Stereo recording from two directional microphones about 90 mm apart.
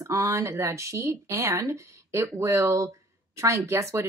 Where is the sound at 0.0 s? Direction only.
35° right (ahead or behind).